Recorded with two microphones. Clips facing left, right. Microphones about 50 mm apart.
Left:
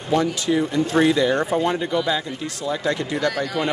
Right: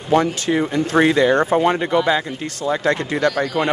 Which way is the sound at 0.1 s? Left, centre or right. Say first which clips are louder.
Right 3 dB; right.